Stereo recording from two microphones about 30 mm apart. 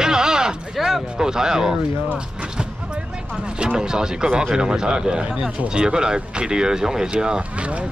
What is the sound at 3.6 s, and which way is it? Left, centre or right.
Speech, right.